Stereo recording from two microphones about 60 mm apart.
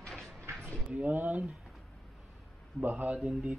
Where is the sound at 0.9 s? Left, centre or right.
Right.